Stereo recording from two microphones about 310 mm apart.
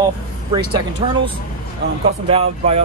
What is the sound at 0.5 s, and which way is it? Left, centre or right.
Speech, centre.